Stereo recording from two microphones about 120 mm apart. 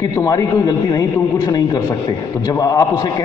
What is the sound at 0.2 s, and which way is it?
Speech, 30° left (ahead or behind).